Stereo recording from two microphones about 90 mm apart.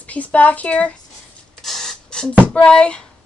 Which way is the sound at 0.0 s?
15° left (ahead or behind).